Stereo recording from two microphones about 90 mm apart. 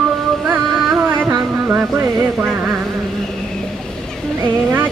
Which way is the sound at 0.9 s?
25° right (ahead or behind).